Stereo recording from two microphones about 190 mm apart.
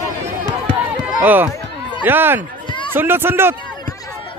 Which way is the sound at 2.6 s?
25° left (ahead or behind).